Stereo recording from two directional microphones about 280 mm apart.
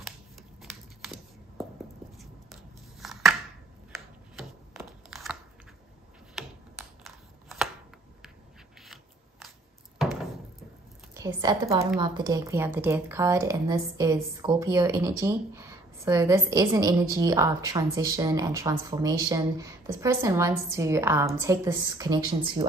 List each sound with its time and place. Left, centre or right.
0.7 s a sound: centre
6.3 s chopping: centre
8.8 s scissors: centre
11.1 s speech: centre